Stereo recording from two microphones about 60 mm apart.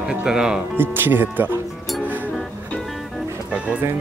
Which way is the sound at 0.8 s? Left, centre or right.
Right.